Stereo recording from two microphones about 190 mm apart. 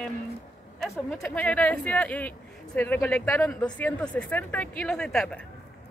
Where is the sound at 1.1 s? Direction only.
5° left (ahead or behind).